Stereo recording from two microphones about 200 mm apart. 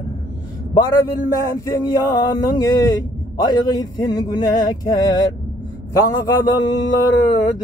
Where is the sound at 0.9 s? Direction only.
15° left (ahead or behind).